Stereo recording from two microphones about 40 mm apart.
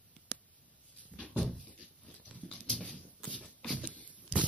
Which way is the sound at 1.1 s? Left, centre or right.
Left.